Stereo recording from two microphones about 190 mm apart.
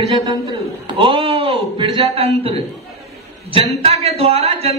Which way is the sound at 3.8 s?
35° right (ahead or behind).